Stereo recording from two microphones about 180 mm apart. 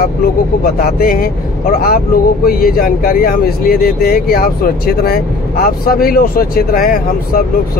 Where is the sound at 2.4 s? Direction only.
55° left (ahead or behind).